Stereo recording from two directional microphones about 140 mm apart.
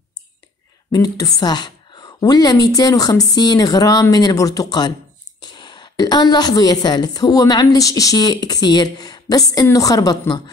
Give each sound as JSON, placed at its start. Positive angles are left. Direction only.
{"t": 0.9, "sound": "a woman's voice", "side_deg": 25}